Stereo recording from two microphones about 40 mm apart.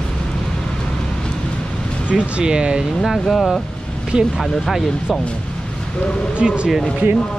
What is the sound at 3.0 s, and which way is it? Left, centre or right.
Speech, centre.